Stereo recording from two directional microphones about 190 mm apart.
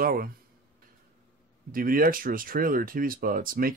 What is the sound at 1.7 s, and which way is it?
Speech, 50° right (ahead or behind).